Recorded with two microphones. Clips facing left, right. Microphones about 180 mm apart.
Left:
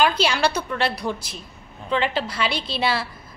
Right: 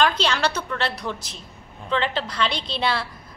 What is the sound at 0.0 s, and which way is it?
A woman's voice, 10° left (ahead or behind).